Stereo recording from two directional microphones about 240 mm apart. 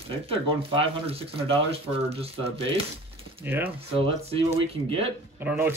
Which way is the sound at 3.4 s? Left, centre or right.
Centre.